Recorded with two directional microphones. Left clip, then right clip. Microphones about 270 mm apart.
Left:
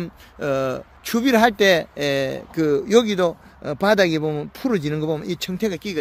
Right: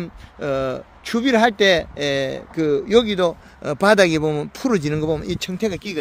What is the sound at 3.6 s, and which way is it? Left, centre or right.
A man's voice, centre.